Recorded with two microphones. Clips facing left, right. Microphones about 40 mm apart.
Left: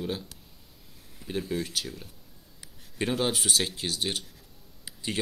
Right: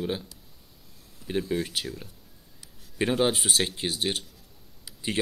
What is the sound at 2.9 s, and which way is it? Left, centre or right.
Speech, centre.